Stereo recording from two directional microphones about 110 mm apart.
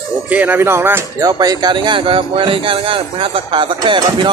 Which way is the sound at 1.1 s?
35° right (ahead or behind).